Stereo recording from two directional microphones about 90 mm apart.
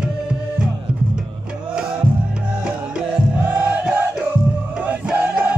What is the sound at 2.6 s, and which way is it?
Music, 10° right (ahead or behind).